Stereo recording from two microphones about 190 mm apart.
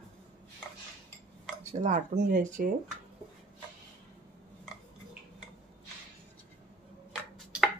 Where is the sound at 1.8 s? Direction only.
40° right (ahead or behind).